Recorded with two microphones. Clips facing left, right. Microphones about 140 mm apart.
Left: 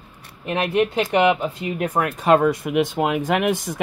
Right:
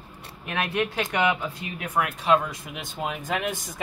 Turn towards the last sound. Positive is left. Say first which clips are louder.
# left 8 dB
turn(degrees=70)  # may be behind; listen again after turning